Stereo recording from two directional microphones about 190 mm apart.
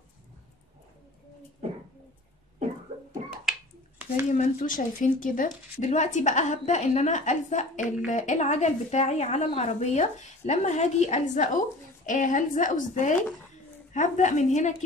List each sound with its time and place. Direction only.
4.3 s a woman's voice: 40° left (ahead or behind)